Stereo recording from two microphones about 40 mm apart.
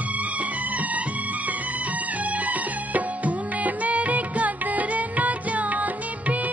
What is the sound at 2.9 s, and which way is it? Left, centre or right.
Music, right.